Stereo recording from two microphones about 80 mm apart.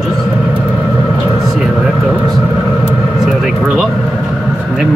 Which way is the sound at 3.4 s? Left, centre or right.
Centre.